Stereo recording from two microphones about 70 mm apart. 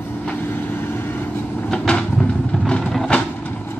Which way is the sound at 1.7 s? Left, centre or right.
Centre.